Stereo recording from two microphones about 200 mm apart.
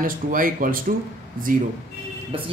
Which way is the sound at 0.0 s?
45° right (ahead or behind).